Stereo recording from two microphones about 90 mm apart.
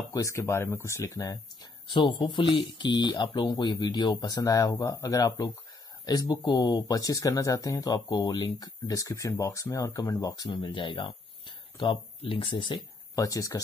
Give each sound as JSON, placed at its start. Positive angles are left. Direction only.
{"t": 0.1, "sound": "speech", "side_deg": 35}
{"t": 1.9, "sound": "speech", "side_deg": 65}
{"t": 13.1, "sound": "speech", "side_deg": 40}